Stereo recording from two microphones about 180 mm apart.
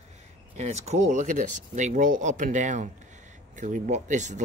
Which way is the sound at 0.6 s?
40° right (ahead or behind).